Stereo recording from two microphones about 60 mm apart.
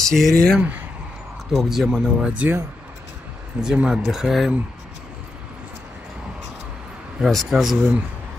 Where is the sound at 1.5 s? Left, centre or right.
Centre.